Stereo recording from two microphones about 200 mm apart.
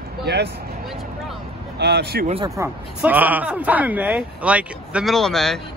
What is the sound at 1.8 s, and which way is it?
Speech, 55° right (ahead or behind).